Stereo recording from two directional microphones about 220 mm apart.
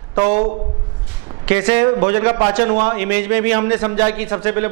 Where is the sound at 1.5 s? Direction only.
10° right (ahead or behind).